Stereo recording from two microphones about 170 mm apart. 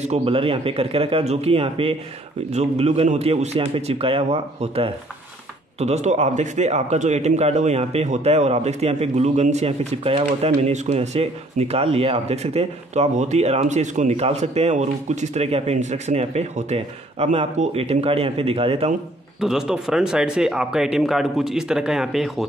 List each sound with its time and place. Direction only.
0.0 s a man's voice: 35° right (ahead or behind)
19.4 s speech: 5° right (ahead or behind)